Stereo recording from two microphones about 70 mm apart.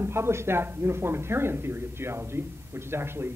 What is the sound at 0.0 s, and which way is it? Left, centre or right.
Speech, right.